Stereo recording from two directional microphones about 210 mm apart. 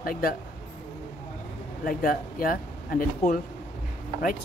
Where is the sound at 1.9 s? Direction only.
45° left (ahead or behind).